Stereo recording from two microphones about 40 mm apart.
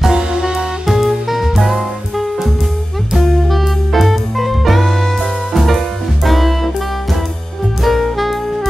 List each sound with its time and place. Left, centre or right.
0.1 s music: centre
0.8 s music: centre
7.8 s saxophone: centre